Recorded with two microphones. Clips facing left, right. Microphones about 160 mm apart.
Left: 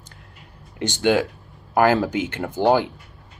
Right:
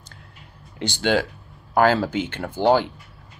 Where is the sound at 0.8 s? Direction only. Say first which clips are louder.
Left 2 dB; 15° left (ahead or behind).